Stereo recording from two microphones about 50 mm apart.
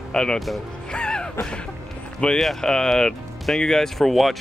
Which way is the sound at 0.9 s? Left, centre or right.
Centre.